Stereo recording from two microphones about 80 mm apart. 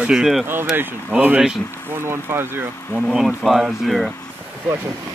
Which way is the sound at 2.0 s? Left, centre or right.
Right.